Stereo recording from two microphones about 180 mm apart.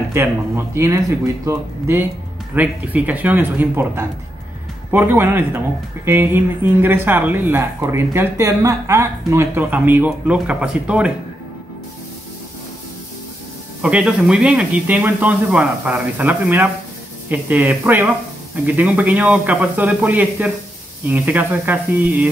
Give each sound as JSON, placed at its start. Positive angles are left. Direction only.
{"t": 0.1, "sound": "speech", "side_deg": -15}
{"t": 13.8, "sound": "speech", "side_deg": -5}